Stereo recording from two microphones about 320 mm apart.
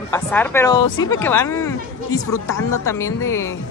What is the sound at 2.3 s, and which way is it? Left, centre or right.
Speech, left.